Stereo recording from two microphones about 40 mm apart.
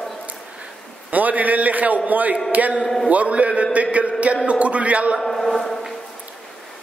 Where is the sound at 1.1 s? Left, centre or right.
Right.